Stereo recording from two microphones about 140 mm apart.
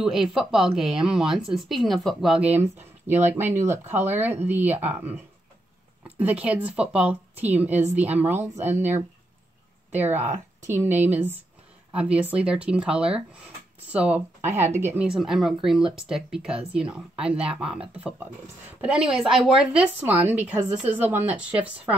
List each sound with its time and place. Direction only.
0.0 s a woman's voice: 5° right (ahead or behind)
6.0 s a sound: 10° right (ahead or behind)
6.4 s a woman's voice: 10° right (ahead or behind)
9.9 s a woman's voice: 15° right (ahead or behind)
15.0 s speech: centre (ahead or behind)
18.8 s a woman's voice: 5° right (ahead or behind)